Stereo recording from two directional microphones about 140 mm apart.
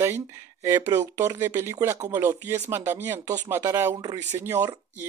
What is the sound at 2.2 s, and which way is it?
Speech, 15° right (ahead or behind).